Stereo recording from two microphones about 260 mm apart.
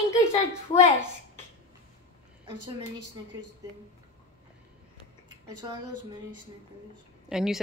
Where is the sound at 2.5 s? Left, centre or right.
Right.